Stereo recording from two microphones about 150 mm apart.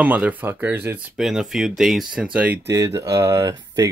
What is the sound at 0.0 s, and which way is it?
Speech, 10° right (ahead or behind).